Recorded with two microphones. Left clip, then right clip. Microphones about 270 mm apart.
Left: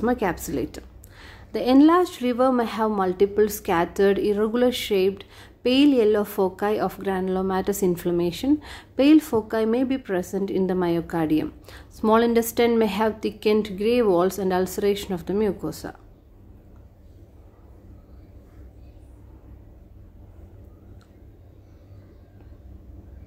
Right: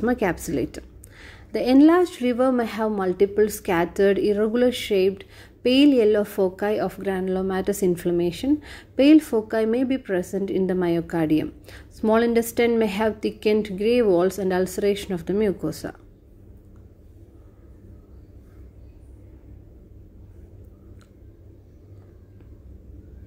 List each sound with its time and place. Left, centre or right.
0.0 s a woman's voice: centre